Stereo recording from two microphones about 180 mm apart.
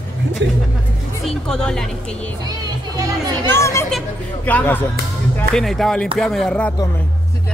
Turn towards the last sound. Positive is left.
turn(degrees=5)  # may be behind; listen again after turning